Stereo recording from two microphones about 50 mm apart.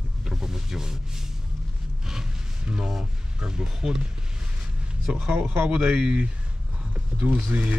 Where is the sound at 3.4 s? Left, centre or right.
Centre.